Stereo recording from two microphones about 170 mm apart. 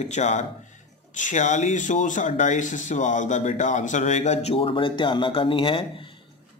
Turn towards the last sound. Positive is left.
turn(degrees=30)  # may be behind; listen again after turning